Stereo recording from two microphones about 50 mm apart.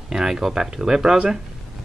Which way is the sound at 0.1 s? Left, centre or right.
Centre.